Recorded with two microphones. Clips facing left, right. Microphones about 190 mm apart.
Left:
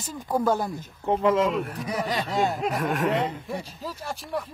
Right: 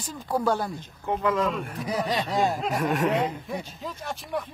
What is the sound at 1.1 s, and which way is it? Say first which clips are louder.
Speech: left 3 dB; 25° left (ahead or behind).